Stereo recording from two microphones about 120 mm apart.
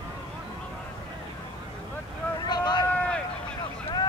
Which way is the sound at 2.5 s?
35° left (ahead or behind).